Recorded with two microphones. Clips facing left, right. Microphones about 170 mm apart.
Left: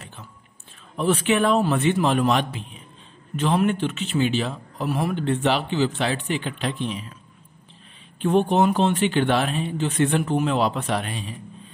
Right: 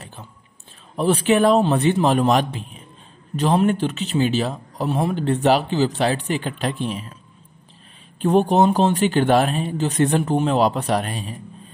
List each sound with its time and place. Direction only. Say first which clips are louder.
0.9 s speech: right 3 dB; 35° right (ahead or behind)
4.8 s speech: right 3 dB; 25° right (ahead or behind)
5.1 s speech: right 6 dB; 40° right (ahead or behind)
8.2 s speech: right 3 dB; 40° right (ahead or behind)